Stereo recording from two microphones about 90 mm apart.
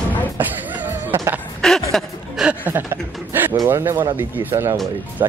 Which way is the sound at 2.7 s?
25° right (ahead or behind).